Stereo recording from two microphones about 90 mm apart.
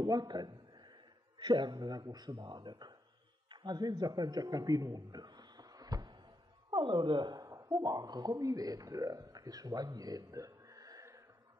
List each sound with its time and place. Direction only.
0.0 s a man's voice: 45° right (ahead or behind)
6.7 s a woman's voice: 60° right (ahead or behind)
7.4 s speech: 35° right (ahead or behind)